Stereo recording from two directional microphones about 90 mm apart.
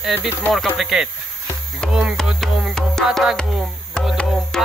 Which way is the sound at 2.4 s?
5° right (ahead or behind).